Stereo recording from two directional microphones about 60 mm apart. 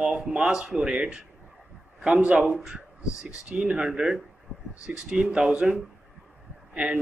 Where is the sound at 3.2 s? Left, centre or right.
Centre.